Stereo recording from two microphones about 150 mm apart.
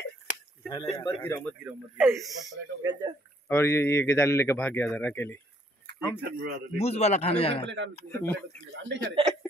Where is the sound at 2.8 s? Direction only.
25° right (ahead or behind).